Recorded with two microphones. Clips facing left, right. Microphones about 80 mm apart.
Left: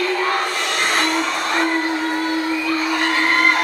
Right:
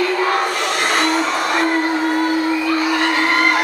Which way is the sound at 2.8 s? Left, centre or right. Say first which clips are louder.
Right 2 dB; centre.